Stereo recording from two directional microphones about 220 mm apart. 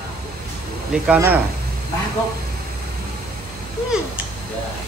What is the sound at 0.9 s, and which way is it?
Speech, 5° right (ahead or behind).